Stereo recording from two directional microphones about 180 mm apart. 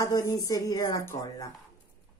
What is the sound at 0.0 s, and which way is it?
Speech, 20° left (ahead or behind).